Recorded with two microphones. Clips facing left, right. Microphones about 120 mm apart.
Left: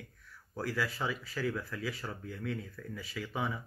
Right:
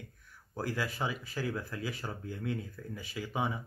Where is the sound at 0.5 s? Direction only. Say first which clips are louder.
Even; 20° right (ahead or behind).